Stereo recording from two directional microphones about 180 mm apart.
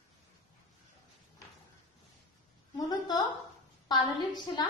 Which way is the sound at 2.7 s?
20° left (ahead or behind).